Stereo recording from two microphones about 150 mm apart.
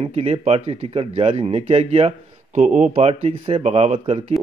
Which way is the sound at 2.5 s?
55° right (ahead or behind).